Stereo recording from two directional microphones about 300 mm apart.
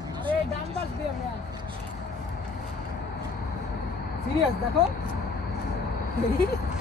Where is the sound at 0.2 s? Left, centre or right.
Centre.